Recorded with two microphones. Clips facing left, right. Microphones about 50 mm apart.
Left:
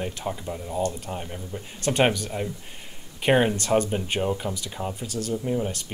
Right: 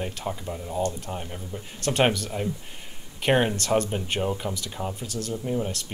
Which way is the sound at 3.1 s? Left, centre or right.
Centre.